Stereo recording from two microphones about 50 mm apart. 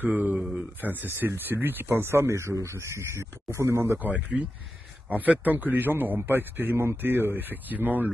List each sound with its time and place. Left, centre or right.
0.0 s a man's voice: right
4.0 s a man's voice: right